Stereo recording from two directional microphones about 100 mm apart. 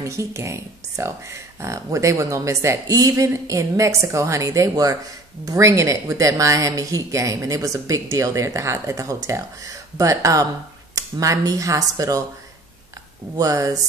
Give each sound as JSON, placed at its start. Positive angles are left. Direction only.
{"t": 0.0, "sound": "speech", "side_deg": -30}
{"t": 13.4, "sound": "speech", "side_deg": -35}